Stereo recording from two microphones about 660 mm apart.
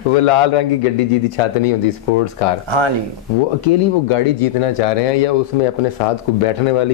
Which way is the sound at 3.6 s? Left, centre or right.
Left.